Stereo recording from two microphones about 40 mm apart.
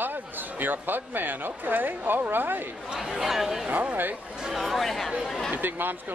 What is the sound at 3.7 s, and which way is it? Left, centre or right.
Speech, right.